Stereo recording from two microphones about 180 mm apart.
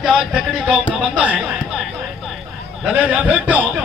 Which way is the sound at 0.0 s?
5° right (ahead or behind).